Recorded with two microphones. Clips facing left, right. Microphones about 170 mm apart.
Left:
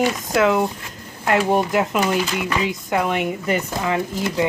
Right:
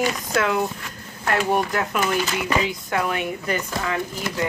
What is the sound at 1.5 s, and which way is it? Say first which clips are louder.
Speech: left 4 dB; 15° left (ahead or behind).